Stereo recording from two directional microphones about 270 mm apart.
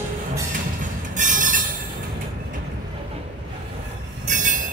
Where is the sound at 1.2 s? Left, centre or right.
Right.